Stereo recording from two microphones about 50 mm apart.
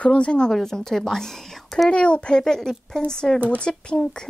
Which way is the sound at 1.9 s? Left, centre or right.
Left.